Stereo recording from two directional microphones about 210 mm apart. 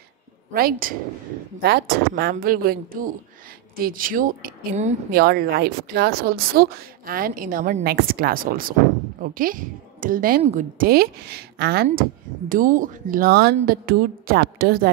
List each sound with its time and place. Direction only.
0.5 s a woman's voice: 45° right (ahead or behind)